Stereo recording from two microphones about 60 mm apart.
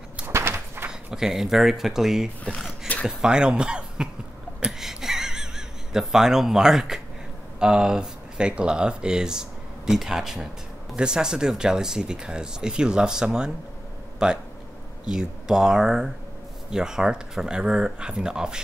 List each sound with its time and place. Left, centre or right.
0.3 s a sound: right
0.8 s speech: centre
2.4 s speech: centre
3.1 s speech: centre
4.6 s a sound: centre
7.5 s speech: centre